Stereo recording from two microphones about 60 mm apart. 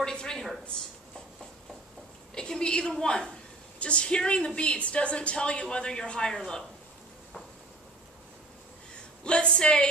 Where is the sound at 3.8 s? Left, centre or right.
Centre.